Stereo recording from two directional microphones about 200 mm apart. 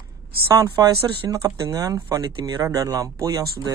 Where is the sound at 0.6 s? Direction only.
20° right (ahead or behind).